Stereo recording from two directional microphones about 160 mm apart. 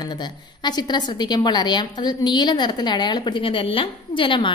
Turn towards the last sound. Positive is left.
turn(degrees=30)  # may be behind; listen again after turning